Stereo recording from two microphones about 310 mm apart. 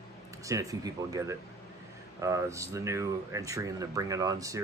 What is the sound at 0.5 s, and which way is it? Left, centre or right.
Speech, centre.